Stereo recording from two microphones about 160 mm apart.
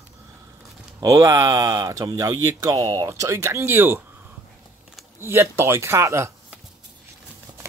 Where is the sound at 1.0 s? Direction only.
20° right (ahead or behind).